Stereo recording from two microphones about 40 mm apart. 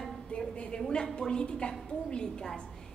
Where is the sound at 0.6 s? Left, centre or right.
Left.